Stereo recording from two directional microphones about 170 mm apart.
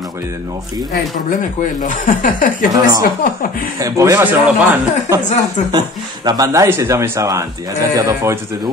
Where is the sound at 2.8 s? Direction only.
20° right (ahead or behind).